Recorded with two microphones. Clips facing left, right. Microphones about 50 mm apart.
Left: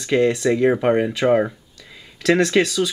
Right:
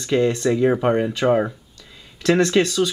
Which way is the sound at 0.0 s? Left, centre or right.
Centre.